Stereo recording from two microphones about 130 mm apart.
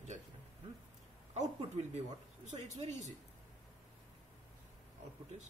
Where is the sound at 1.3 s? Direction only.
60° right (ahead or behind).